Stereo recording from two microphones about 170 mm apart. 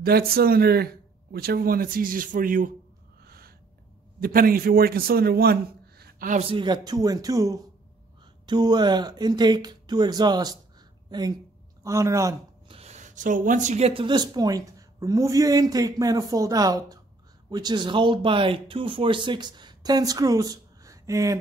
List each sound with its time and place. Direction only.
0.0 s speech: 65° right (ahead or behind)
3.3 s a sound: 65° right (ahead or behind)
4.2 s a man's voice: 60° right (ahead or behind)
6.3 s a woman's voice: 35° right (ahead or behind); by 12.4 s 20° right (ahead or behind)
12.6 s speech: 35° right (ahead or behind); by 21.4 s 20° right (ahead or behind)